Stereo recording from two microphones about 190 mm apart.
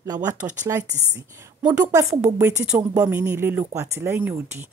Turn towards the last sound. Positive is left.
turn(degrees=-10)  # may be behind; listen again after turning